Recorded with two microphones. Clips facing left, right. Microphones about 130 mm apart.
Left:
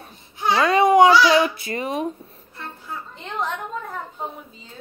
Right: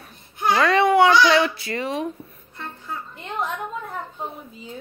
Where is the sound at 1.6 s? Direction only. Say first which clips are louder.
Left 1 dB; 20° left (ahead or behind).